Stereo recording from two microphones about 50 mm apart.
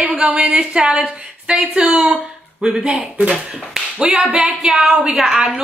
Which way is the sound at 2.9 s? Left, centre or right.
Right.